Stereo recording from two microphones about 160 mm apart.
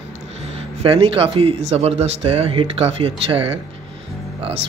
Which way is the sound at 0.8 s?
35° right (ahead or behind).